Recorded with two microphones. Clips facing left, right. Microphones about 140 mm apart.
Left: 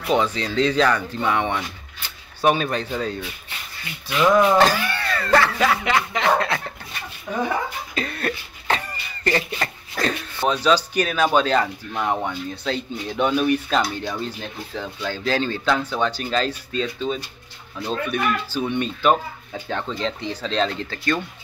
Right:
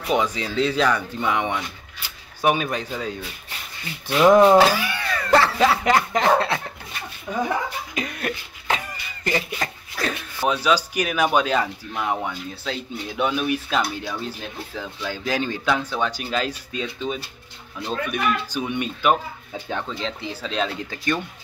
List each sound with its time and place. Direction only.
0.0 s speech: 10° right (ahead or behind)
2.0 s a sound: 10° right (ahead or behind)
4.1 s speech: 30° right (ahead or behind)
4.6 s speech: 10° right (ahead or behind)
5.4 s speech: 30° right (ahead or behind)
7.3 s speech: centre (ahead or behind)
7.9 s speech: 15° right (ahead or behind)